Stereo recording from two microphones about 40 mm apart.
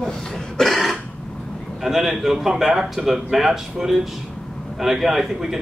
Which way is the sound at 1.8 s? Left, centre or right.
Centre.